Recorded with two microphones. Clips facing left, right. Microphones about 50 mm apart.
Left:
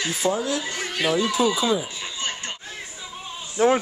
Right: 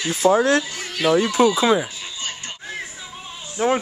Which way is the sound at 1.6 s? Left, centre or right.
Right.